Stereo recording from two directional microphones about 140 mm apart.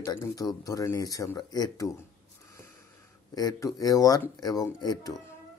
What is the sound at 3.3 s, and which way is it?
Speech, 25° left (ahead or behind).